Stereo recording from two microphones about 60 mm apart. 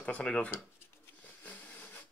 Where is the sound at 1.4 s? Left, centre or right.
Left.